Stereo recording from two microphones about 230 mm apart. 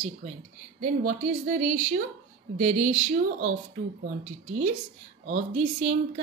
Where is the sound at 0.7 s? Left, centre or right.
Right.